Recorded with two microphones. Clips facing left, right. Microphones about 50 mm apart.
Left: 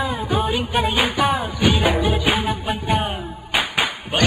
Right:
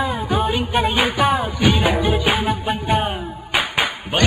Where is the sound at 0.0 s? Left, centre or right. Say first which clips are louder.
Right 1 dB; centre.